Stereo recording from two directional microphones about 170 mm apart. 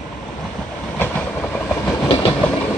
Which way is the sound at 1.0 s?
10° left (ahead or behind).